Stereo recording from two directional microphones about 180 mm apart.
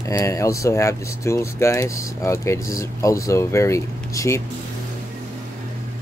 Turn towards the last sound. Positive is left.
turn(degrees=15)  # may be behind; listen again after turning